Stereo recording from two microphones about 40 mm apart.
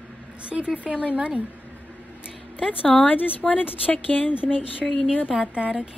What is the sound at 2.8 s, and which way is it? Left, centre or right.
A woman's voice, left.